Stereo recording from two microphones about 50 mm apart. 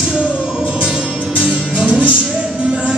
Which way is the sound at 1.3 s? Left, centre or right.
Right.